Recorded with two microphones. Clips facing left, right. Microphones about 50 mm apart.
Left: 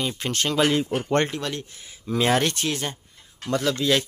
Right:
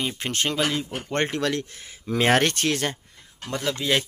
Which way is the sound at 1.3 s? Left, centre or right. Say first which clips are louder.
Right 4 dB; right.